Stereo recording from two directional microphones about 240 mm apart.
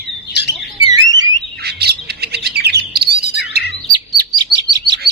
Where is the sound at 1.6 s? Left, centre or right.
Right.